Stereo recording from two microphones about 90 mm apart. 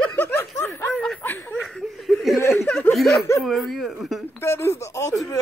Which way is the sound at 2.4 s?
30° left (ahead or behind).